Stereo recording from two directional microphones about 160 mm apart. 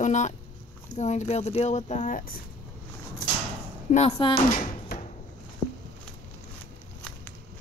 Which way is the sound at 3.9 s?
40° left (ahead or behind).